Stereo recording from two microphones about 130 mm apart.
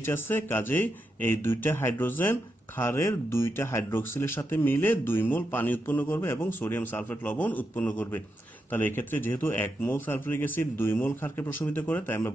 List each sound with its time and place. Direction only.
0.0 s speech: 15° left (ahead or behind)